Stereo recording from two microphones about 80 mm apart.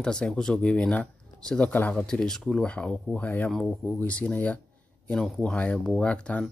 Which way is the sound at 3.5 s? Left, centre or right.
Centre.